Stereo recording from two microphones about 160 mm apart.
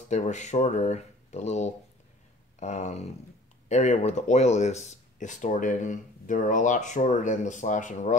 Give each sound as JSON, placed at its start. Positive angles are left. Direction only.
{"t": 0.1, "sound": "speech", "side_deg": 45}